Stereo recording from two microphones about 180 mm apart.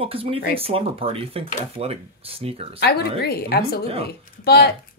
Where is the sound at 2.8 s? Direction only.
60° left (ahead or behind).